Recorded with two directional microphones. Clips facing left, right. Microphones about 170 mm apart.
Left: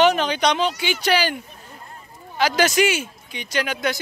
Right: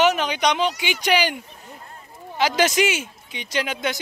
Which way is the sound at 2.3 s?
25° right (ahead or behind).